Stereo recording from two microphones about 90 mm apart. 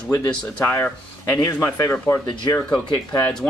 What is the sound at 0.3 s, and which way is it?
Speech, 15° left (ahead or behind).